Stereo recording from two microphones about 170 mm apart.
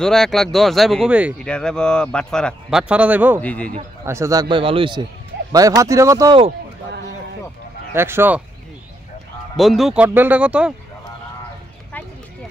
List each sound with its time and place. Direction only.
0.0 s speech: 5° left (ahead or behind)
1.4 s speech: 5° left (ahead or behind)
2.8 s speech: 5° right (ahead or behind)
3.3 s speech: 10° left (ahead or behind)
4.0 s a man's voice: 15° right (ahead or behind)
7.9 s speech: 15° right (ahead or behind)
9.6 s speech: centre (ahead or behind)